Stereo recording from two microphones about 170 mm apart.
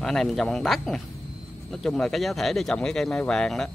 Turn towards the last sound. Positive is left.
turn(degrees=0)  # may be behind; listen again after turning